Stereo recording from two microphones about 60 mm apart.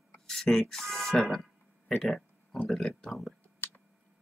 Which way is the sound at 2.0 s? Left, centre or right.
Centre.